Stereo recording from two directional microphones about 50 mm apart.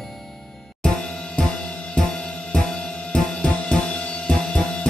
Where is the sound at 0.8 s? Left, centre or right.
Centre.